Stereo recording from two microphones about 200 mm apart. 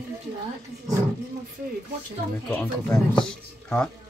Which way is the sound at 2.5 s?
5° left (ahead or behind).